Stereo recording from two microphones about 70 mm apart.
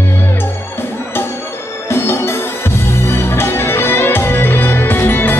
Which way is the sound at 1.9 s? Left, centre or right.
Left.